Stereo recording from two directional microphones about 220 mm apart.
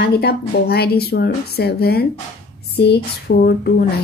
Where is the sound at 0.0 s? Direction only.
45° left (ahead or behind).